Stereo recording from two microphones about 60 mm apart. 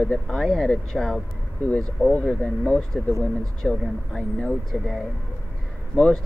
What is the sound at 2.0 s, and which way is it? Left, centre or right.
Speech, left.